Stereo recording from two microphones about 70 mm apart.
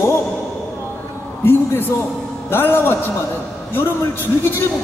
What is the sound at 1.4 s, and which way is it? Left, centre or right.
A man's voice, left.